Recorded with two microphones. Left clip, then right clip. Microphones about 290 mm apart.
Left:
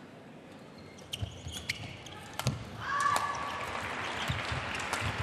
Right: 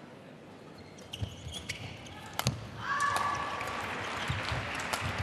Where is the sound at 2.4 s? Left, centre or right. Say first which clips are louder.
Right 2 dB; right.